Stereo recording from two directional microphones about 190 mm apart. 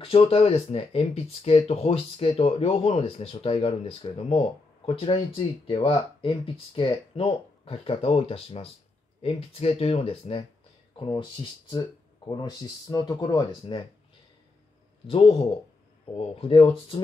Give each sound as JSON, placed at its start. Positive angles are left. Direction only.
{"t": 0.0, "sound": "speech", "side_deg": 30}
{"t": 15.0, "sound": "speech", "side_deg": 30}